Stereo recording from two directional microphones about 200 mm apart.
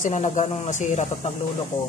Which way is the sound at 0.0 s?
35° left (ahead or behind).